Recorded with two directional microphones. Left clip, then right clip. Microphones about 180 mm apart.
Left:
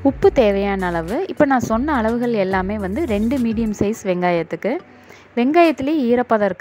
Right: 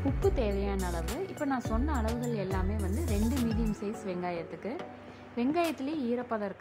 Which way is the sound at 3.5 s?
45° left (ahead or behind).